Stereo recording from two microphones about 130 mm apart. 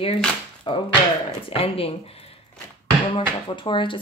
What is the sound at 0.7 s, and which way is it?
Speech, 45° left (ahead or behind).